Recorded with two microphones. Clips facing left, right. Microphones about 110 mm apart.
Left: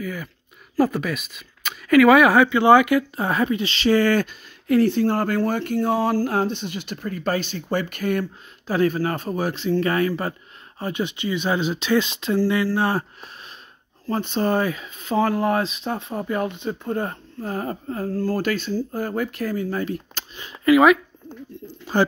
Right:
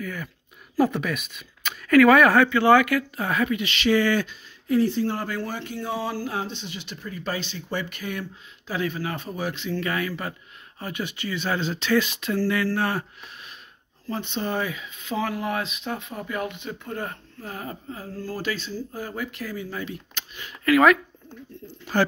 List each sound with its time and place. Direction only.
0.0 s speech: 5° left (ahead or behind); by 10.3 s 35° left (ahead or behind)
10.8 s speech: 25° left (ahead or behind)
14.0 s speech: 40° left (ahead or behind)
20.3 s speech: 25° left (ahead or behind)